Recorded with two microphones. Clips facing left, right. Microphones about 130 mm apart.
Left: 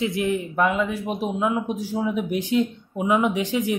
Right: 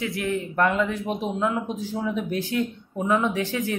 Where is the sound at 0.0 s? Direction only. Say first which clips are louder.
Left 3 dB; 20° left (ahead or behind).